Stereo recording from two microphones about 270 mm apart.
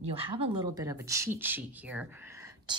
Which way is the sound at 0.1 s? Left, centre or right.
Centre.